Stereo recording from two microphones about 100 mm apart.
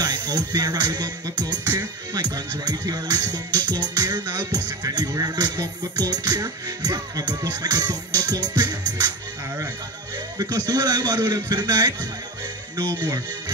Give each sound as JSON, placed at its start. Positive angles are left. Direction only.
{"t": 0.0, "sound": "music", "side_deg": -45}
{"t": 10.1, "sound": "music", "side_deg": -40}